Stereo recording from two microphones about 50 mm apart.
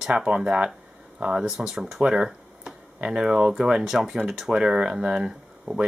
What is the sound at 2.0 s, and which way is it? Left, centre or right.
Speech, centre.